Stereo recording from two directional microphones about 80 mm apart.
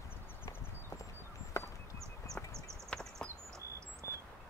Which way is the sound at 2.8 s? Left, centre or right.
Centre.